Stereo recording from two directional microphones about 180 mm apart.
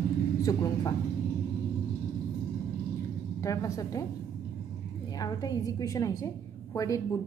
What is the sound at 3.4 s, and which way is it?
Speech, 15° left (ahead or behind).